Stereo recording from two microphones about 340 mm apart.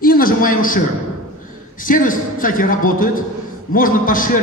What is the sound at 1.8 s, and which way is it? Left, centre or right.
A man's voice, left.